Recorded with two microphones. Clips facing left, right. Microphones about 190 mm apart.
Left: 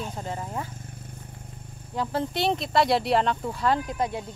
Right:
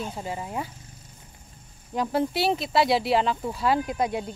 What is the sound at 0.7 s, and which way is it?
Vehicle, 55° left (ahead or behind).